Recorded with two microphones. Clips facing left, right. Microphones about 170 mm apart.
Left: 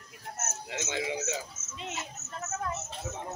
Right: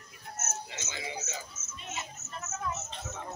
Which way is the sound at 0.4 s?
65° left (ahead or behind).